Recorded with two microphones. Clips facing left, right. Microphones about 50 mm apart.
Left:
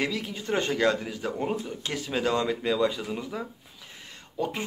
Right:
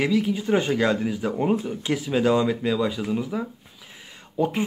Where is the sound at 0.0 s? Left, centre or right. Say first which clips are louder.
Right 8 dB; centre.